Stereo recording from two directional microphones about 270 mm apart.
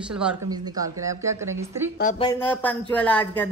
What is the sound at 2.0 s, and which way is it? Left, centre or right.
Speech, left.